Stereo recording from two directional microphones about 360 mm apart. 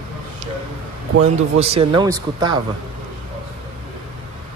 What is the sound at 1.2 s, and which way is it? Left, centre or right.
Speech, centre.